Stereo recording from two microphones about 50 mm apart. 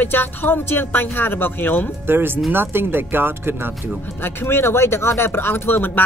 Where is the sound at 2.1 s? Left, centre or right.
Right.